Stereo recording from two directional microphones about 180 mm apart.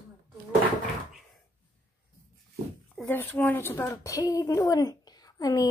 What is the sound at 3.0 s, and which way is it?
A woman's voice, 10° left (ahead or behind).